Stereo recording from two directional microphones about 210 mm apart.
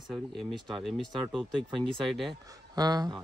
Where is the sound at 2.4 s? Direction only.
15° right (ahead or behind).